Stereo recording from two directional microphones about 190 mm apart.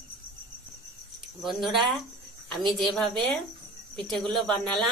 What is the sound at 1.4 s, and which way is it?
A woman's voice, centre (ahead or behind).